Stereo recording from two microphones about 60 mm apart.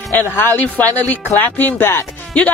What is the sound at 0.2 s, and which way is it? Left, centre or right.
Speech, left.